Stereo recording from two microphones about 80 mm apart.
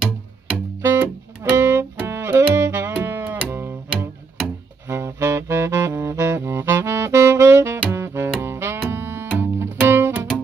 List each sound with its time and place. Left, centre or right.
0.7 s music: right
4.8 s saxophone: right
7.9 s music: right